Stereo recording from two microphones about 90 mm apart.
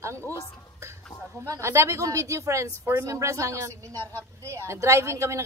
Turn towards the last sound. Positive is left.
turn(degrees=-35)  # may be behind; listen again after turning